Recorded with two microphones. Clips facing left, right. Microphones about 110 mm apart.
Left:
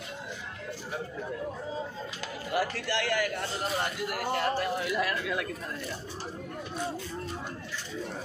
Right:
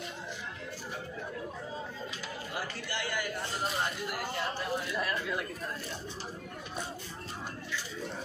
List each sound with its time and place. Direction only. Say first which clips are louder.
2.5 s a man's voice: left 10 dB; 90° left
4.1 s speech: left 6 dB; 65° left (ahead or behind); by 5.5 s 90° left